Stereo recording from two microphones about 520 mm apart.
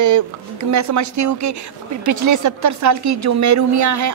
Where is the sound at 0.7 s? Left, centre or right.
Right.